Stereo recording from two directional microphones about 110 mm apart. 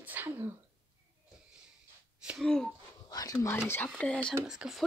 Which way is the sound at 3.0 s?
35° left (ahead or behind).